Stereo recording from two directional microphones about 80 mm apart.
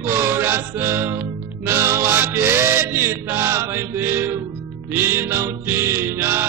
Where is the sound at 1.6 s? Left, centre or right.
Right.